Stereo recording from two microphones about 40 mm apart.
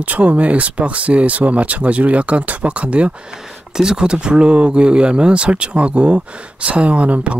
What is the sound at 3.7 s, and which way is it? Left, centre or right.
Speech, centre.